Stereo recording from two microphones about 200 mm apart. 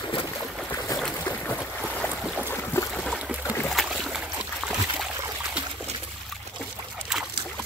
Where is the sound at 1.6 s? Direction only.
5° right (ahead or behind).